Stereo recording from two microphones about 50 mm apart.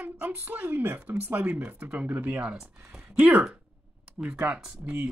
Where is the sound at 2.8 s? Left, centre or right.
Centre.